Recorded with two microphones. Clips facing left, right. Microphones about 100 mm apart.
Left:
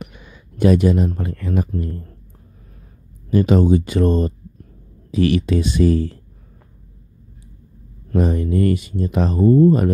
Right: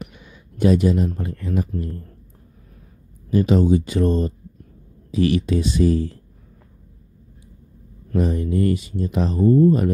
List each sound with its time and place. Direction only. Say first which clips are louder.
0.0 s speech: left 1 dB; 65° left (ahead or behind)
3.3 s speech: left 2 dB; 65° left (ahead or behind)
8.1 s speech: left 2 dB; 60° left (ahead or behind)
9.4 s speech: left 2 dB; 50° left (ahead or behind)